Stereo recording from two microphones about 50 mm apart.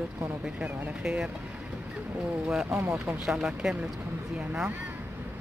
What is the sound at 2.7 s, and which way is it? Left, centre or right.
Speech, right.